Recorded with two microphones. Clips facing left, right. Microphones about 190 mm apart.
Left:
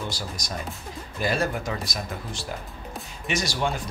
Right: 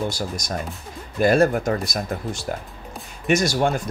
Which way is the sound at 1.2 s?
50° right (ahead or behind).